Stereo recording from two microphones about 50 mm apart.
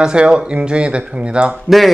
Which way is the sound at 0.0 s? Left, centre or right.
Centre.